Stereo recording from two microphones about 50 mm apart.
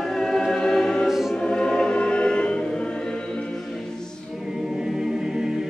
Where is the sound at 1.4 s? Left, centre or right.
Centre.